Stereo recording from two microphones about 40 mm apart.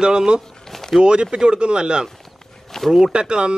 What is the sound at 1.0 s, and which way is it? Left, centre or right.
Speech, centre.